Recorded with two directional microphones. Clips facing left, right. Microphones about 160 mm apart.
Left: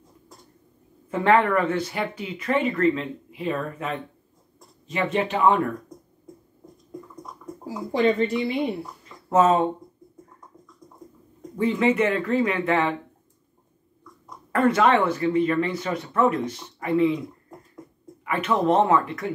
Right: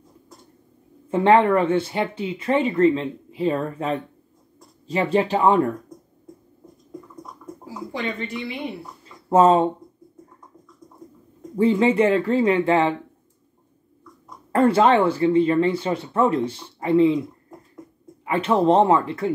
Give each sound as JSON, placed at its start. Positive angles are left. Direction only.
{"t": 1.1, "sound": "speech", "side_deg": -25}
{"t": 7.9, "sound": "speech", "side_deg": 40}
{"t": 9.3, "sound": "speech", "side_deg": -30}
{"t": 11.5, "sound": "speech", "side_deg": -30}
{"t": 14.5, "sound": "speech", "side_deg": -30}
{"t": 18.2, "sound": "speech", "side_deg": -30}